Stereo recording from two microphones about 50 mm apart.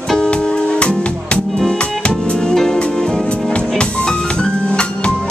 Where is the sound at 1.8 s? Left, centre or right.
Left.